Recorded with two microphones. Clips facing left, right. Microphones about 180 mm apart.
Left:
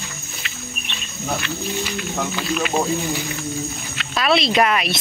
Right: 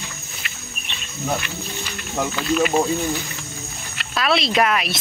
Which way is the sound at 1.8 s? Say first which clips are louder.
Left 1 dB; 5° left (ahead or behind).